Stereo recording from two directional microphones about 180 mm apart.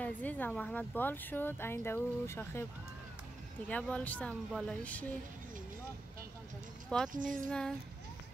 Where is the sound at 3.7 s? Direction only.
5° left (ahead or behind).